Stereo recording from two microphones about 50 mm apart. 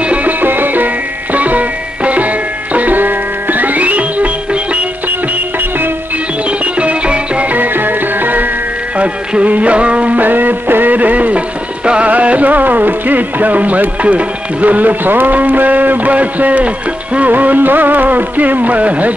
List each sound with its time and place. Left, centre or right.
0.0 s music: right
0.4 s music: right
6.6 s music: right
8.9 s music: right